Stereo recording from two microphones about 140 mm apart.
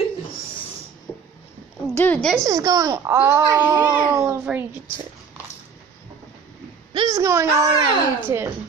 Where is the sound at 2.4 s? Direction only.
25° right (ahead or behind).